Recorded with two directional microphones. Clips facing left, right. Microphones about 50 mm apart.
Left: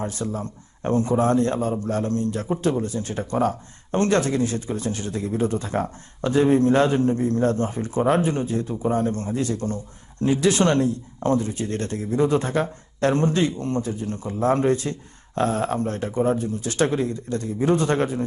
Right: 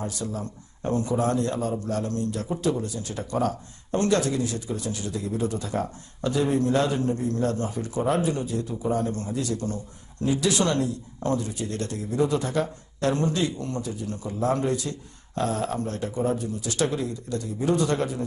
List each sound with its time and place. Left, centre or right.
0.0 s a man's voice: left